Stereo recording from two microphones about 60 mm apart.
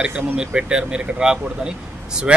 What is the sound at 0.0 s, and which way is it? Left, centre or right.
Speech, right.